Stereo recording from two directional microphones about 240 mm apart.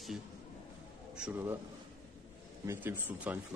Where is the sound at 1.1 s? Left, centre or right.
Centre.